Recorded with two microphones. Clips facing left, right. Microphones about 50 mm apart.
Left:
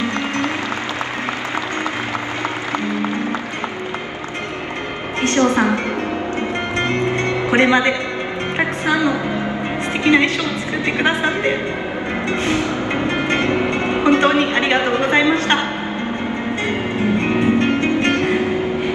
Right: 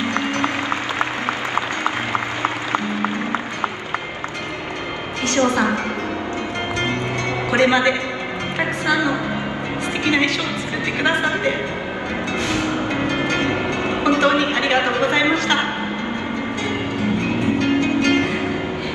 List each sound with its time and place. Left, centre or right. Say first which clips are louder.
5.2 s music: left 2 dB; left
7.5 s music: left 1 dB; left
11.0 s a sound: even; left
12.3 s music: left 2 dB; left
17.2 s music: left 5 dB; left